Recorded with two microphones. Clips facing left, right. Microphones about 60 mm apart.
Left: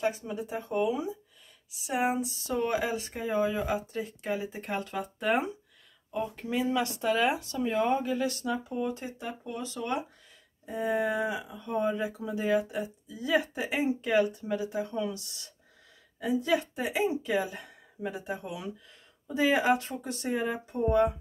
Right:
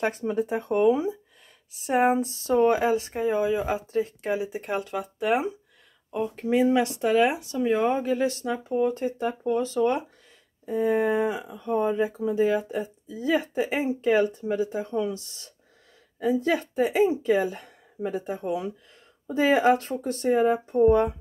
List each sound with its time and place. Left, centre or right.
0.0 s speech: right
2.4 s speech: right
3.3 s speech: centre
3.9 s speech: right
4.8 s speech: centre
6.1 s speech: centre; by 21.1 s right